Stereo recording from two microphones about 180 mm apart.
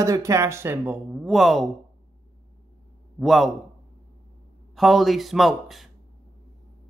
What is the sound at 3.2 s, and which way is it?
Speech, centre (ahead or behind).